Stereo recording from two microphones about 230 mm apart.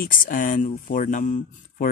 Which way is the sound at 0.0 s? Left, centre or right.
Left.